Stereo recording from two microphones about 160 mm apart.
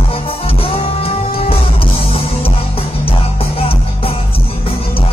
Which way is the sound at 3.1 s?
35° left (ahead or behind).